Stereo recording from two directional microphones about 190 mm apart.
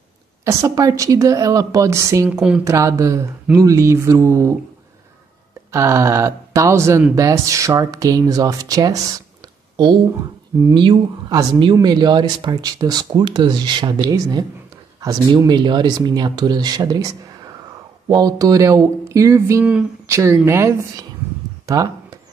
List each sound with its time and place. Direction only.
0.5 s speech: 15° right (ahead or behind)
5.7 s speech: 15° right (ahead or behind)
10.6 s speech: 25° right (ahead or behind)
21.6 s a sound: 20° right (ahead or behind)